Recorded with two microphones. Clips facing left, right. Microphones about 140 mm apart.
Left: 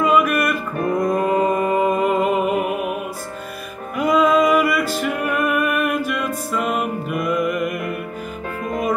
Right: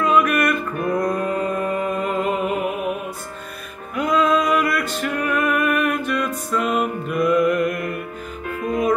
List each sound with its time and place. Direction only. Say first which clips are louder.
0.0 s music: left 1 dB; 5° left (ahead or behind)
0.7 s music: left 1 dB; 30° left (ahead or behind)
1.0 s music: left 4 dB; 5° left (ahead or behind)
3.9 s music: left 2 dB; 5° left (ahead or behind)